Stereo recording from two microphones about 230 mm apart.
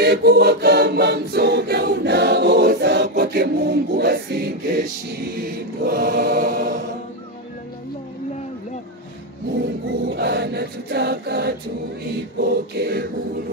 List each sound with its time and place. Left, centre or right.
0.0 s a capella: right
5.9 s choir: right
9.6 s choir: right